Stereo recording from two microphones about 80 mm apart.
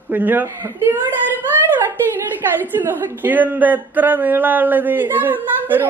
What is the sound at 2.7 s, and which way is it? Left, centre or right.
Speech, right.